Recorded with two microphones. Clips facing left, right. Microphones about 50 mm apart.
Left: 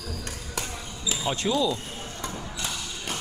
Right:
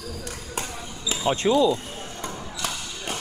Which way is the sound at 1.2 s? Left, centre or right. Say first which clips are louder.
Right 6 dB; centre.